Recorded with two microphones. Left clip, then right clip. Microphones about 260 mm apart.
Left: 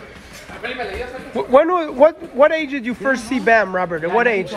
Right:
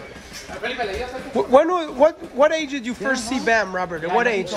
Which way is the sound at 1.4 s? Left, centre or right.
Centre.